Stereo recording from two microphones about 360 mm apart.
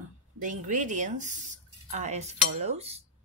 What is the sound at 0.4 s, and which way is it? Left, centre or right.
Speech, right.